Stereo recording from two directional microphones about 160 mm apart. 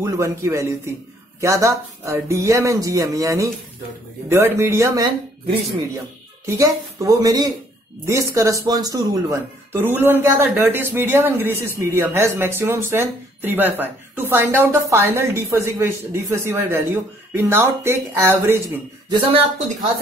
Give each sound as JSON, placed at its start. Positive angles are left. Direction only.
{"t": 0.0, "sound": "speech", "side_deg": -15}
{"t": 6.4, "sound": "speech", "side_deg": -20}
{"t": 19.0, "sound": "speech", "side_deg": -25}